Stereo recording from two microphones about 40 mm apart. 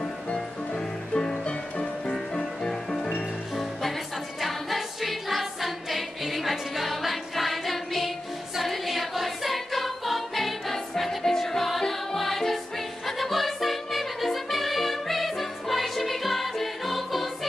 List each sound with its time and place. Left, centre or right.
0.0 s music: left
4.4 s music: centre